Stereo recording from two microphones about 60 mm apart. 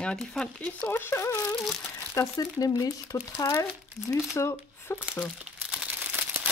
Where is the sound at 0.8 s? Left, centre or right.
Left.